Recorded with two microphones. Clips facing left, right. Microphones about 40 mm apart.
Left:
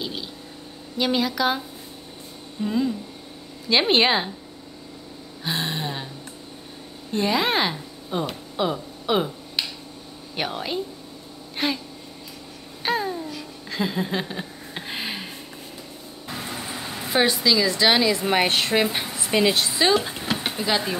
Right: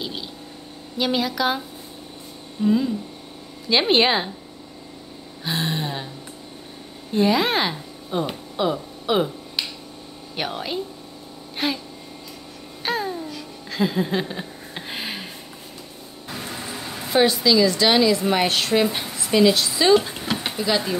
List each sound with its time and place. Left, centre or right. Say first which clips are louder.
0.9 s speech: even; centre
2.6 s speech: right 4 dB; centre
5.4 s a sound: right 2 dB; centre
7.1 s a woman's voice: right 3 dB; centre
8.5 s a sound: right 2 dB; centre
10.3 s speech: even; centre
11.5 s a sound: even; centre
12.8 s babbling: left 1 dB; centre
16.9 s a woman's voice: right 3 dB; centre
17.9 s a woman's voice: right 2 dB; left
19.1 s a woman's voice: right 4 dB; left
19.9 s speech: right 4 dB; centre
20.5 s speech: right 2 dB; left